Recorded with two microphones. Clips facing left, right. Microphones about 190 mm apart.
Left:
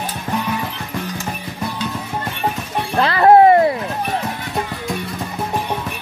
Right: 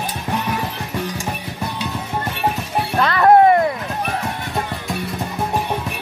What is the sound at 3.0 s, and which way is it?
Shatter, 30° left (ahead or behind).